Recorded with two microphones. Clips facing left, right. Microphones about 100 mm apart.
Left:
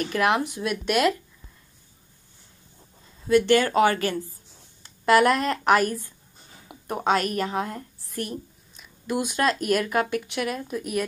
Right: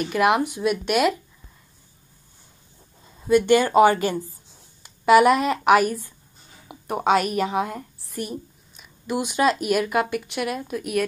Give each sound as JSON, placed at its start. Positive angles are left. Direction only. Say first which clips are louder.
{"t": 0.0, "sound": "speech", "louder": "right 3 dB", "side_deg": -15}
{"t": 3.3, "sound": "speech", "louder": "right 2 dB", "side_deg": -20}
{"t": 4.8, "sound": "a woman's voice", "louder": "right 4 dB", "side_deg": -10}